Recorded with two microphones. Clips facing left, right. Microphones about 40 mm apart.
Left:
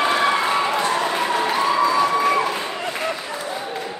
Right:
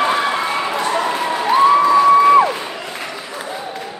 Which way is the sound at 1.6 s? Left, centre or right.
Right.